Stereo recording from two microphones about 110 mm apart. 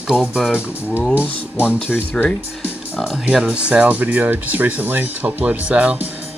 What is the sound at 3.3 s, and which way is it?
Speech, 10° right (ahead or behind).